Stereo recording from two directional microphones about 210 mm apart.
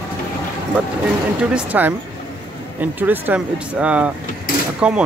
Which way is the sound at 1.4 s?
5° right (ahead or behind).